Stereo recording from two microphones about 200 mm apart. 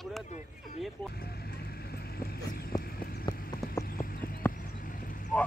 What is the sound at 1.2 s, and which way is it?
Vehicle, 50° left (ahead or behind).